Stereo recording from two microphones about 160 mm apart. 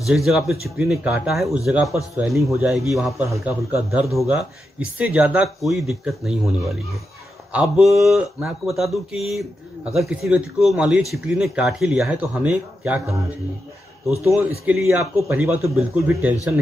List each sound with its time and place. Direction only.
0.0 s a man's voice: centre (ahead or behind)
7.5 s speech: 5° right (ahead or behind)
14.2 s a man's voice: 15° right (ahead or behind)